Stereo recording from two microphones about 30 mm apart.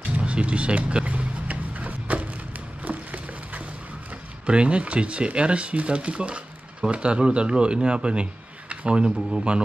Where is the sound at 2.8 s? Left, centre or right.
Right.